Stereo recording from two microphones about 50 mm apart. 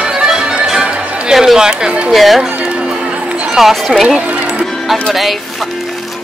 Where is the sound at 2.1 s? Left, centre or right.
Centre.